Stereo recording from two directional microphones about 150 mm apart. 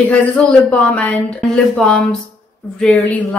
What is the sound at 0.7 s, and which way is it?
A woman's voice, 10° left (ahead or behind).